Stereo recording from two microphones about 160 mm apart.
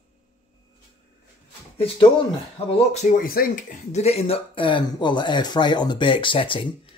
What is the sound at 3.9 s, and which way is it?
Speech, 40° left (ahead or behind).